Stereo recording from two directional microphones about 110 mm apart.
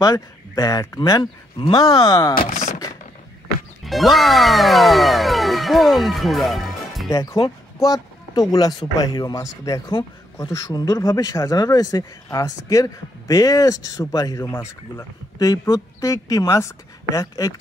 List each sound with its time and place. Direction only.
0.0 s speech: 35° left (ahead or behind)
3.8 s speech: centre (ahead or behind)
7.1 s speech: 35° left (ahead or behind)
15.3 s a woman's voice: 35° left (ahead or behind)